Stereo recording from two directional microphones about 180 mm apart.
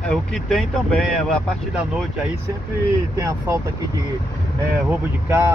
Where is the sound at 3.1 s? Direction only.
15° right (ahead or behind).